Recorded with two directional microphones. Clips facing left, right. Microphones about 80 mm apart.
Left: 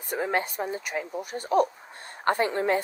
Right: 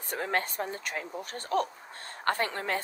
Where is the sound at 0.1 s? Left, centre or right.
Centre.